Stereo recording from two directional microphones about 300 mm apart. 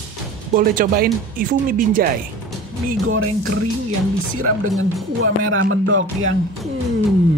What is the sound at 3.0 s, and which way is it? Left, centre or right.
Speech, right.